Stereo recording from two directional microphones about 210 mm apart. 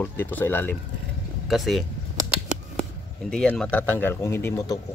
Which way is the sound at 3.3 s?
5° left (ahead or behind).